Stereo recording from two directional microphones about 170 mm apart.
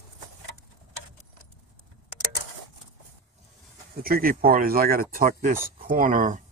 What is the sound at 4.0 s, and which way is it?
Speech, 60° right (ahead or behind).